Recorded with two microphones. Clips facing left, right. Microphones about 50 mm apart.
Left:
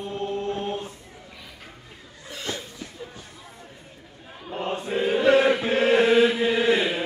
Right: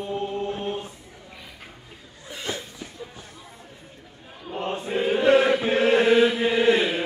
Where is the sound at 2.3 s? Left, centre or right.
Centre.